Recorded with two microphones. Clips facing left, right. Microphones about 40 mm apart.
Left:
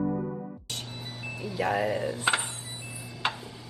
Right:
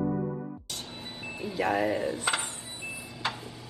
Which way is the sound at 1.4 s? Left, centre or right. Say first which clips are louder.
Right 1 dB; right.